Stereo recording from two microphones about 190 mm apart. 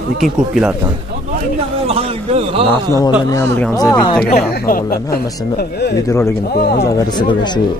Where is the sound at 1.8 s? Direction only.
30° right (ahead or behind).